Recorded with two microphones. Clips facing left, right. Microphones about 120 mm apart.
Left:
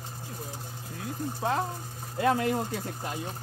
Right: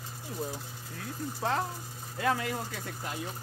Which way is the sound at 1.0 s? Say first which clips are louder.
Left 2 dB; 20° left (ahead or behind).